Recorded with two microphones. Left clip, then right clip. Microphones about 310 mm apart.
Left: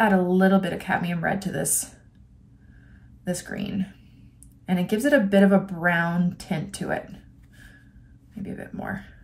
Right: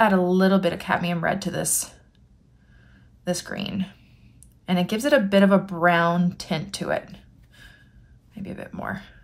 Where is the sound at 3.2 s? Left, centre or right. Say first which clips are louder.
Right 3 dB; centre.